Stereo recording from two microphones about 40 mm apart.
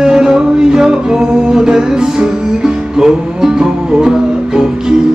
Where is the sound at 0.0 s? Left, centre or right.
Centre.